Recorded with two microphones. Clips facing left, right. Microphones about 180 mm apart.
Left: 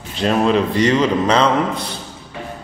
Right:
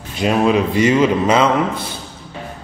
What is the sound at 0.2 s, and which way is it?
A man's voice, 5° right (ahead or behind).